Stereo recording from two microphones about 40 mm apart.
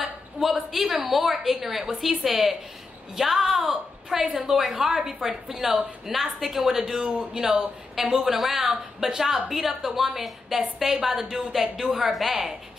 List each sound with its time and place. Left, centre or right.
0.0 s a woman's voice: centre